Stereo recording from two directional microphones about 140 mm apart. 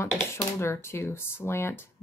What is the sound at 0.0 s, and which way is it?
Speech, 20° left (ahead or behind).